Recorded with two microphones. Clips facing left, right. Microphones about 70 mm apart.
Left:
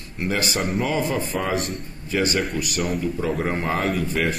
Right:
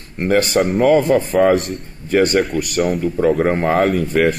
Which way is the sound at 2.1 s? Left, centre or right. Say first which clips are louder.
Right 8 dB; right.